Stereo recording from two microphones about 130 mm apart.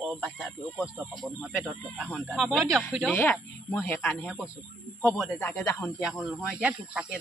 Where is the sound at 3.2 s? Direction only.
15° left (ahead or behind).